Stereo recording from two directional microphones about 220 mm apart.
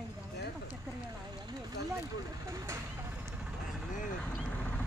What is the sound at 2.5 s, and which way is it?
Speech, 15° right (ahead or behind).